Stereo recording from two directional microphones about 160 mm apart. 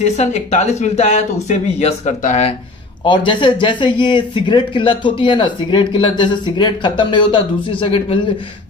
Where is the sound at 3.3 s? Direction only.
30° left (ahead or behind).